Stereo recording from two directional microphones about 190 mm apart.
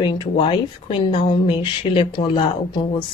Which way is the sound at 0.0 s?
25° left (ahead or behind).